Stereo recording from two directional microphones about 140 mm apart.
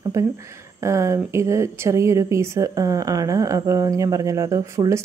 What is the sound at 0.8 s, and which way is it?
Speech, 20° right (ahead or behind).